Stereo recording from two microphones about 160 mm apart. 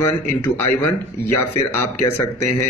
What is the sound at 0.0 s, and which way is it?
Speech, 15° left (ahead or behind).